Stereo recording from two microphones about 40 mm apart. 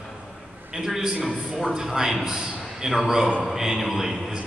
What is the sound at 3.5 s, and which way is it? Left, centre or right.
Speech, centre.